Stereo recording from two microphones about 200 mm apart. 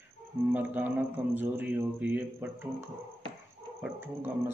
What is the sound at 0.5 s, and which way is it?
A man's voice, 10° right (ahead or behind).